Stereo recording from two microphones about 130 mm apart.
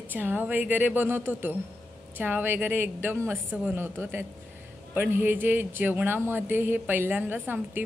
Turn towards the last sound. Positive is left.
turn(degrees=-15)  # may be behind; listen again after turning